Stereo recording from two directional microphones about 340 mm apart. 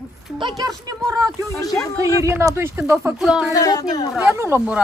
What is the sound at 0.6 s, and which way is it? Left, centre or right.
Speech, centre.